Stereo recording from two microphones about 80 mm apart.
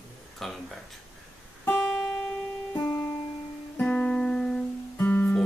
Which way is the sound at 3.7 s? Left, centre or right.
Centre.